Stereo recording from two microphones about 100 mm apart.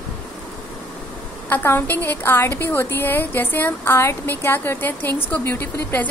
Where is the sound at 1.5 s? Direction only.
20° left (ahead or behind).